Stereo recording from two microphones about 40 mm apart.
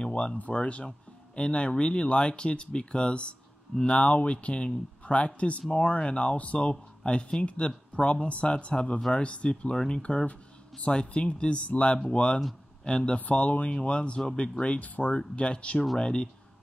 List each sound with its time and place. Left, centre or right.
0.0 s speech: left
4.0 s speech: left
13.2 s speech: left
14.8 s speech: left
15.1 s speech: left